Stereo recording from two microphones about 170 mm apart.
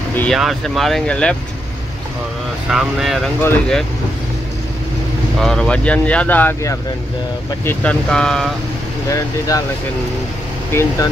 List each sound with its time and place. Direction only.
0.1 s a sound: 10° left (ahead or behind)
0.4 s speech: centre (ahead or behind)
2.7 s speech: 5° right (ahead or behind)
5.4 s speech: 5° left (ahead or behind)
10.7 s speech: 15° left (ahead or behind)